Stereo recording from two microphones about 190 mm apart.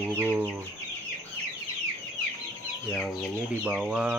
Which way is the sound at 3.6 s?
5° right (ahead or behind).